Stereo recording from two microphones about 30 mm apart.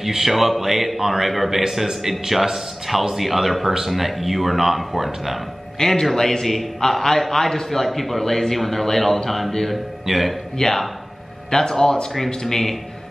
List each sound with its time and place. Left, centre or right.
0.0 s a man's voice: centre
5.8 s a man's voice: centre
11.5 s a man's voice: centre